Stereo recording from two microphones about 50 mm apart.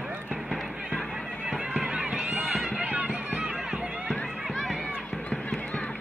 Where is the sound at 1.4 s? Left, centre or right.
Centre.